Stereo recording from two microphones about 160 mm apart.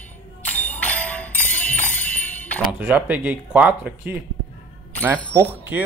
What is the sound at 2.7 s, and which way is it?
Speech, 10° right (ahead or behind).